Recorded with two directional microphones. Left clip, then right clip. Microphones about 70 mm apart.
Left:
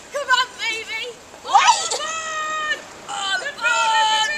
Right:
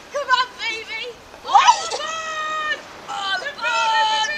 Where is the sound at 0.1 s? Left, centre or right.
Centre.